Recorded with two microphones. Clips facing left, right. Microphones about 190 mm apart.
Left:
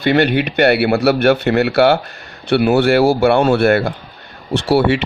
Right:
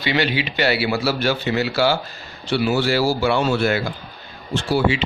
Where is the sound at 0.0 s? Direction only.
55° left (ahead or behind).